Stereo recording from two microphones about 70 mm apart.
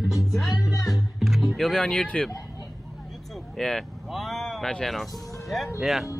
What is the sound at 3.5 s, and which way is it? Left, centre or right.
Speech, centre.